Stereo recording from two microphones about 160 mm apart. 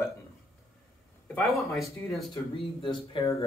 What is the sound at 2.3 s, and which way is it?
Speech, 30° left (ahead or behind).